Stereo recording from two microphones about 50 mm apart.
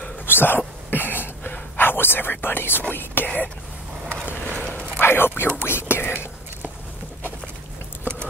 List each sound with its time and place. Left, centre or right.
0.3 s cough: left
0.8 s whispering: left
2.9 s speech: left
4.3 s a sound: left
5.0 s speech: left
5.6 s whispering: left